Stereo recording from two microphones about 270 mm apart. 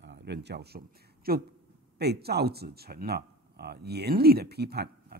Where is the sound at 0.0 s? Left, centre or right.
Right.